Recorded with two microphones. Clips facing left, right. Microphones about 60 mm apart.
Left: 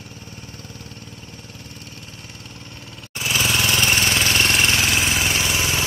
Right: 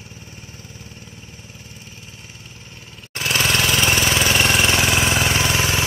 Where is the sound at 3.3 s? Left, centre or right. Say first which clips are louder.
Right 1 dB; centre.